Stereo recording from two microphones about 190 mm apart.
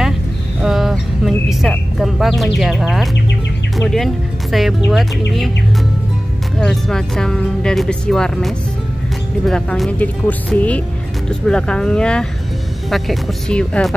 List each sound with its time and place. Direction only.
0.6 s a sound: centre (ahead or behind)
3.8 s speech: centre (ahead or behind)
6.6 s speech: centre (ahead or behind)